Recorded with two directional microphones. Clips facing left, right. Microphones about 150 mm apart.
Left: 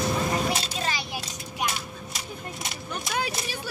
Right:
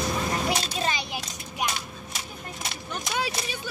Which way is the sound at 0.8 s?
20° right (ahead or behind).